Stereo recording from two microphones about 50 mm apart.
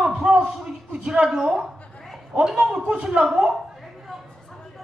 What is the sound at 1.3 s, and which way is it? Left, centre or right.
Speech, centre.